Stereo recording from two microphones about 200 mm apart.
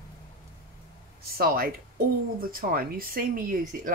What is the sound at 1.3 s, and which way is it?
Speech, 45° right (ahead or behind).